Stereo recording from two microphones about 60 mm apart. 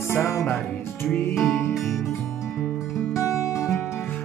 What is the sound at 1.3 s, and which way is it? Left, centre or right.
Music, centre.